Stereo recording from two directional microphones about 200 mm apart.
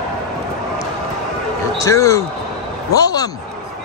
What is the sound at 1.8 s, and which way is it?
Speech, 15° left (ahead or behind).